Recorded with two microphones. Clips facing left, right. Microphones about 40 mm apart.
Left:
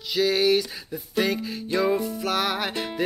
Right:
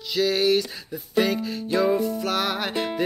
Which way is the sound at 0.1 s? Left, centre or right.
Centre.